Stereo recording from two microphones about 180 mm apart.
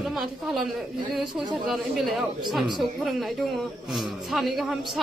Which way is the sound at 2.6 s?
25° right (ahead or behind).